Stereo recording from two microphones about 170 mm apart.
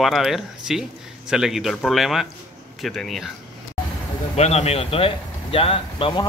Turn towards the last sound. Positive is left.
turn(degrees=30)  # may be behind; listen again after turning